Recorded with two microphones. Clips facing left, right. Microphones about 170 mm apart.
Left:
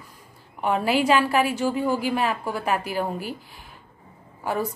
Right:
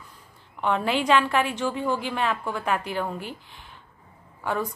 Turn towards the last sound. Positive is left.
turn(degrees=5)  # may be behind; listen again after turning